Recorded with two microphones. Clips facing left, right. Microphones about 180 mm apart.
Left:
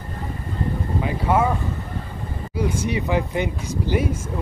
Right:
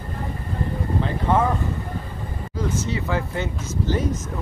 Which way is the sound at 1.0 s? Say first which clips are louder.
Left 1 dB; 10° left (ahead or behind).